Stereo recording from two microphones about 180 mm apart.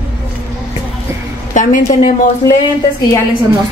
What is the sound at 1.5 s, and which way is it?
Speech, 45° left (ahead or behind).